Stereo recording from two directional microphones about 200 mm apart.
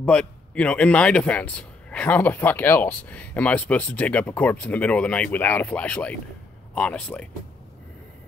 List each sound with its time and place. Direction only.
0.0 s a man's voice: 5° left (ahead or behind)